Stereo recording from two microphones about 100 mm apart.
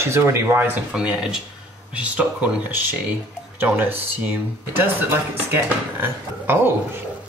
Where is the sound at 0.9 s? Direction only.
10° right (ahead or behind).